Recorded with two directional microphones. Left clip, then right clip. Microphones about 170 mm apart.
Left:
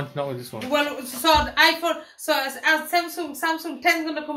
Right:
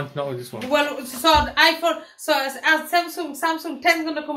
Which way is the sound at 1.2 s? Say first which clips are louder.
Right 1 dB; 30° right (ahead or behind).